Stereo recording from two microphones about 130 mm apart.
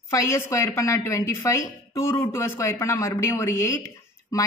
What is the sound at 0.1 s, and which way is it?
Speech, 25° left (ahead or behind).